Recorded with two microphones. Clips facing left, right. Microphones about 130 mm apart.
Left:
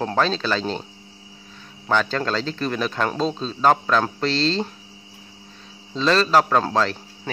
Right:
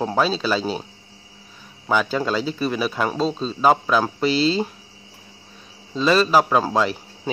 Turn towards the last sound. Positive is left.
turn(degrees=-10)  # may be behind; listen again after turning